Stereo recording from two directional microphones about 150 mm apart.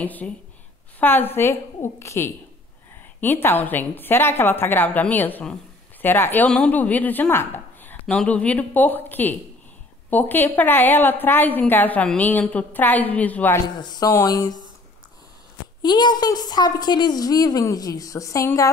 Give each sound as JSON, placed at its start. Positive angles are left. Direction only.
{"t": 0.0, "sound": "a woman's voice", "side_deg": 10}
{"t": 13.7, "sound": "a woman's voice", "side_deg": 25}
{"t": 15.8, "sound": "a woman's voice", "side_deg": 30}